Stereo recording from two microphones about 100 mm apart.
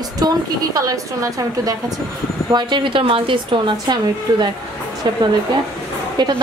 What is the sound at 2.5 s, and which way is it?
A woman's voice, 55° right (ahead or behind).